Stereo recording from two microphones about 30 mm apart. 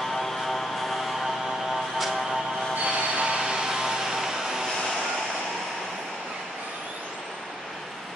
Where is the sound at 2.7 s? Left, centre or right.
Right.